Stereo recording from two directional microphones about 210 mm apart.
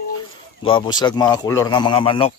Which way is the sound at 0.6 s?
25° left (ahead or behind).